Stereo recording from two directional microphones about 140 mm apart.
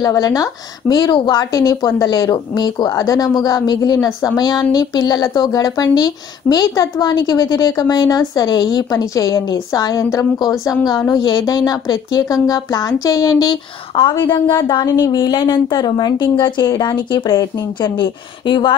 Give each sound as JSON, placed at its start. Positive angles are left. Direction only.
{"t": 0.0, "sound": "a woman's voice", "side_deg": 25}